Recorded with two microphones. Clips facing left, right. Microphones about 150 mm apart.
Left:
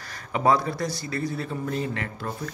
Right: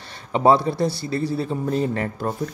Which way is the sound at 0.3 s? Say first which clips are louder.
Right 5 dB; 30° right (ahead or behind).